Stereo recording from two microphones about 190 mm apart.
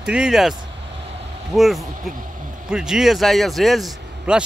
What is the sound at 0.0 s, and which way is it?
Speech, 5° right (ahead or behind).